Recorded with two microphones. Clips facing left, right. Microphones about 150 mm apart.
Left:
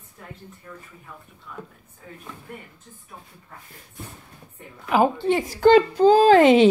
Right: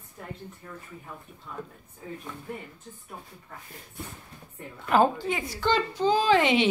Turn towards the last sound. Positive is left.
turn(degrees=40)  # may be behind; listen again after turning